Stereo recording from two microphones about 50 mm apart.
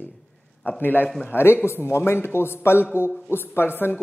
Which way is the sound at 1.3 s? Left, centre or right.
Left.